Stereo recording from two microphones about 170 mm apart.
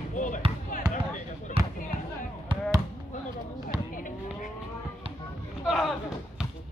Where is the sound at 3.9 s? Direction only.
50° left (ahead or behind).